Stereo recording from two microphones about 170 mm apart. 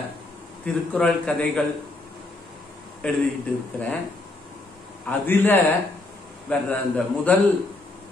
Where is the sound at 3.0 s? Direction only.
5° left (ahead or behind).